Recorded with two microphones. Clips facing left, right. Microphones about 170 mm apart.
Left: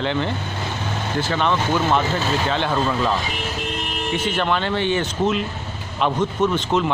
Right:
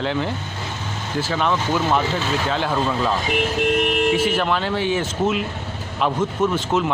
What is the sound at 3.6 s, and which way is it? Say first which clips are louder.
Vehicle: right 9 dB; 65° right (ahead or behind).